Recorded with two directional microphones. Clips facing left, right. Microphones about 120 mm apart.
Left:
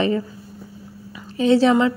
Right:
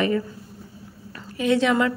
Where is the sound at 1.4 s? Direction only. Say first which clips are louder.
Left 5 dB; 30° left (ahead or behind).